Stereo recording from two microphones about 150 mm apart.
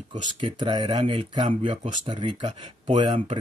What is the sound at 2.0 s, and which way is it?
Speech, 35° right (ahead or behind).